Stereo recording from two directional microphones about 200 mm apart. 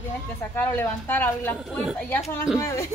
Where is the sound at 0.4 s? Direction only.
10° left (ahead or behind).